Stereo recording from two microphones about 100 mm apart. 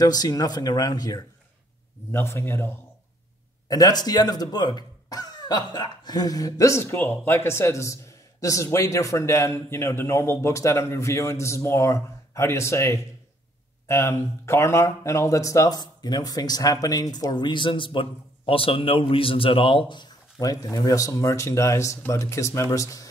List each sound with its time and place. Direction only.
0.0 s speech: 40° left (ahead or behind)
2.1 s speech: 25° left (ahead or behind)
3.6 s speech: 40° left (ahead or behind)